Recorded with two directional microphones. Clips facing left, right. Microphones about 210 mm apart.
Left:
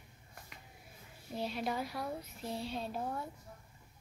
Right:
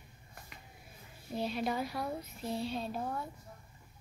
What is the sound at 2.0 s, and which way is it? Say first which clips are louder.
Speech: right 2 dB; 10° left (ahead or behind).